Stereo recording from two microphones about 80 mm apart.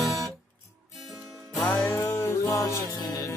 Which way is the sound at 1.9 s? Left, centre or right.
Left.